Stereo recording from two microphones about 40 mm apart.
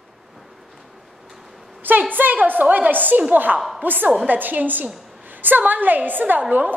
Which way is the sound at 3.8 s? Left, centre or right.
Right.